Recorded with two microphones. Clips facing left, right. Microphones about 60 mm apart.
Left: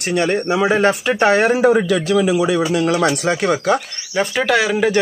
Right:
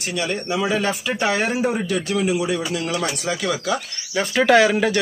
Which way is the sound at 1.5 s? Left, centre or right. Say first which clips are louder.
Left 8 dB; left.